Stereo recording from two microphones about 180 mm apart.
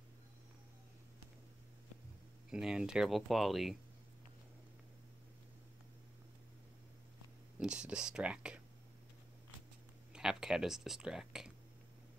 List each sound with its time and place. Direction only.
2.5 s speech: 5° right (ahead or behind)
7.5 s speech: 5° right (ahead or behind)
10.1 s speech: 5° right (ahead or behind)